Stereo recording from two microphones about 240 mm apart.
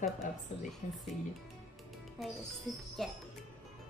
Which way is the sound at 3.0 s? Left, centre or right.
Centre.